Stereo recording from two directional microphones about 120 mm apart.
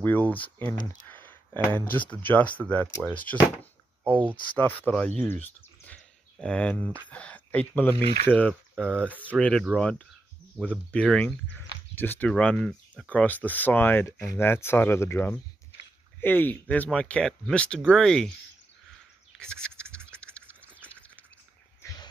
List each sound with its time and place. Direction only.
0.0 s speech: 15° left (ahead or behind)
1.0 s a sound: 15° left (ahead or behind)
2.0 s speech: 15° left (ahead or behind)
3.5 s a sound: 15° right (ahead or behind)
4.6 s speech: 15° left (ahead or behind)
7.9 s speech: 55° right (ahead or behind)
8.3 s speech: 10° left (ahead or behind)
19.3 s bird: 5° left (ahead or behind)
20.8 s a sound: 10° left (ahead or behind)